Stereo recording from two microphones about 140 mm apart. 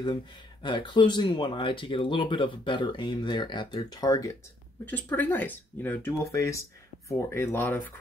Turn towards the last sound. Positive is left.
turn(degrees=15)  # may be behind; listen again after turning